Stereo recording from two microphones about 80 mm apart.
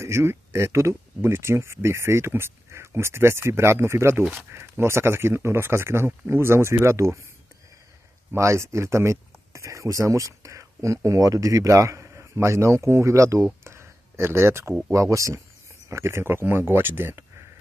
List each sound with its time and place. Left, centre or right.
0.0 s speech: right
8.3 s speech: right
13.7 s a sound: right
14.9 s speech: right